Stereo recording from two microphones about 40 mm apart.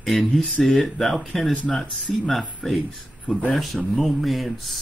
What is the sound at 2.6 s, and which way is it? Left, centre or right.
Speech, centre.